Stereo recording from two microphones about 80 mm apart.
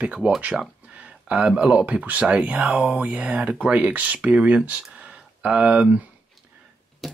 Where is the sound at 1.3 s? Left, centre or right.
Centre.